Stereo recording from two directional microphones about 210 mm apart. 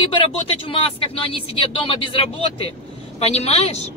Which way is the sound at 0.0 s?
25° left (ahead or behind).